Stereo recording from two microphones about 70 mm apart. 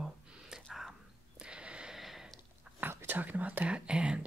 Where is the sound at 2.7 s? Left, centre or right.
Right.